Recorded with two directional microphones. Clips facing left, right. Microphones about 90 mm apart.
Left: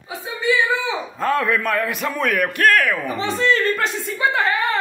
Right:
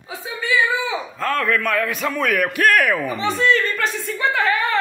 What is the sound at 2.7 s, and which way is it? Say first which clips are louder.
Speech: right 1 dB; 10° right (ahead or behind).